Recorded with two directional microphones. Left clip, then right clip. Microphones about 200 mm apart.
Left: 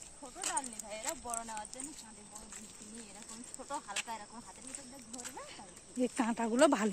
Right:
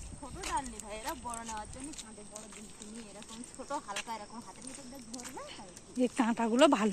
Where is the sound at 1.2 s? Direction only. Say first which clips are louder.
Right 1 dB; 40° left (ahead or behind).